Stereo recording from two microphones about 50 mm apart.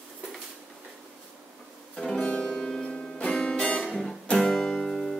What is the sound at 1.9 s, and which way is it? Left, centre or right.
Music, centre.